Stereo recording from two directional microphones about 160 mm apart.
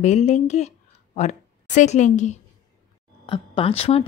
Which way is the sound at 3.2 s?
35° left (ahead or behind).